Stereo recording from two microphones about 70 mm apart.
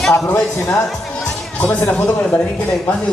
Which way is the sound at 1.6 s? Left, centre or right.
Left.